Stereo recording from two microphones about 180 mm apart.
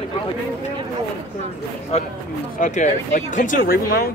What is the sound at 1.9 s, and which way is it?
Speech, 35° left (ahead or behind).